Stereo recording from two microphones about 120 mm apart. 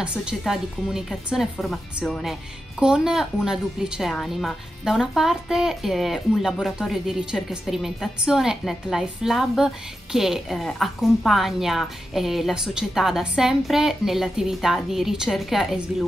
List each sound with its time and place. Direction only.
0.0 s a woman's voice: 10° right (ahead or behind)